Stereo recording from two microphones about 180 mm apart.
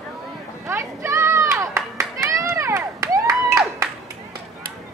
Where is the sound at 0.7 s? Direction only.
15° right (ahead or behind).